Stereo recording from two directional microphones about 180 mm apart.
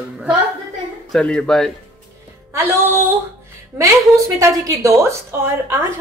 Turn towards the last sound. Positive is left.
turn(degrees=-15)  # may be behind; listen again after turning